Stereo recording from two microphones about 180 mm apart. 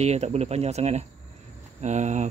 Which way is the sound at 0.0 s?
35° right (ahead or behind).